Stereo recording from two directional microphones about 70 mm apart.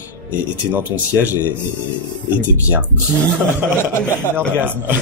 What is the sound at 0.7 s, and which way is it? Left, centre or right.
Speech, right.